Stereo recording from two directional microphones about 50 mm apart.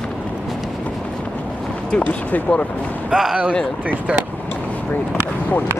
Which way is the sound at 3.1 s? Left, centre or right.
Centre.